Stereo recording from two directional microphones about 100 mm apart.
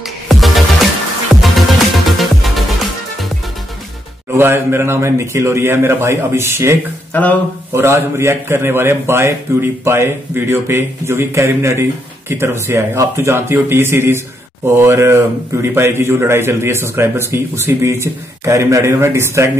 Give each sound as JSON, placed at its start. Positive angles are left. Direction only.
{"t": 0.0, "sound": "music", "side_deg": 0}
{"t": 4.4, "sound": "speech", "side_deg": -25}
{"t": 7.1, "sound": "speech", "side_deg": 15}
{"t": 7.7, "sound": "speech", "side_deg": -25}